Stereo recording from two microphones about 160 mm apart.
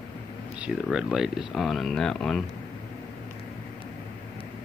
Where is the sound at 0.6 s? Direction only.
5° right (ahead or behind).